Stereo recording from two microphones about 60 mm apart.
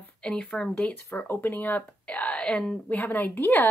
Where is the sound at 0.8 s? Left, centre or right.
Left.